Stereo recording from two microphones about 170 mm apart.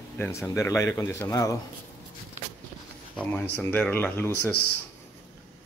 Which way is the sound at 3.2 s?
10° left (ahead or behind).